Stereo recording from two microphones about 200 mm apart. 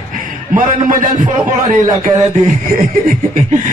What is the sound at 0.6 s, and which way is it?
A man's voice, 40° right (ahead or behind).